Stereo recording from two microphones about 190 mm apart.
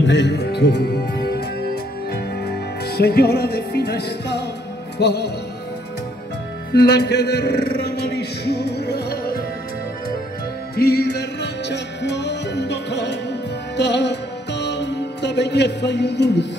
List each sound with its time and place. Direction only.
0.0 s speech: 65° left (ahead or behind)
2.4 s music: 55° left (ahead or behind)
6.7 s speech: 60° left (ahead or behind)
10.8 s music: 60° left (ahead or behind)